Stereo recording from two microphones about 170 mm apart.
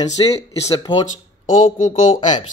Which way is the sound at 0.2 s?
30° left (ahead or behind).